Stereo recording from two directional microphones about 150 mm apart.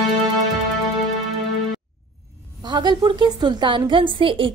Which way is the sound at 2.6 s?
30° right (ahead or behind).